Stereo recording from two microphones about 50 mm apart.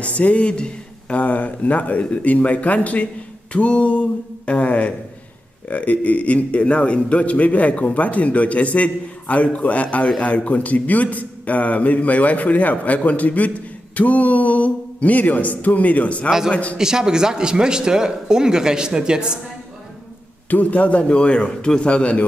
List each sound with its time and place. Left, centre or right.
0.0 s a man's voice: left
16.7 s speech: centre
20.4 s a man's voice: left